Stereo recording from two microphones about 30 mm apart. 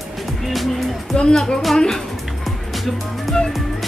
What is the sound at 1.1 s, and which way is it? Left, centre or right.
Speech, left.